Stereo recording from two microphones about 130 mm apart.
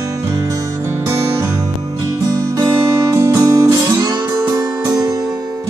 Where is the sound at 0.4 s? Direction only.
20° right (ahead or behind).